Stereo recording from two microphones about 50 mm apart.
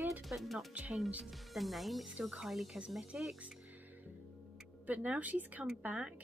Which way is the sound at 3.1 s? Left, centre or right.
Right.